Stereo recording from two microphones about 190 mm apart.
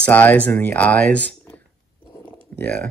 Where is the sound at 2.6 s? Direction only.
10° left (ahead or behind).